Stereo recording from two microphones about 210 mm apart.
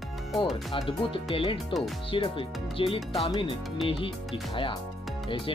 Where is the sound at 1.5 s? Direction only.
Centre (ahead or behind).